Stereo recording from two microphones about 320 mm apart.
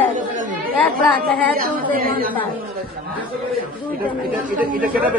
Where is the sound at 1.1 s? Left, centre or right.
Right.